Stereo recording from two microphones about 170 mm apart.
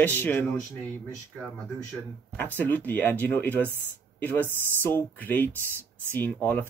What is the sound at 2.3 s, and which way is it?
Speech, 10° left (ahead or behind).